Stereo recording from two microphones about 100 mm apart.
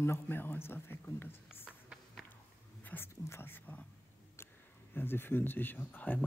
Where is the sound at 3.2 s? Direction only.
25° left (ahead or behind).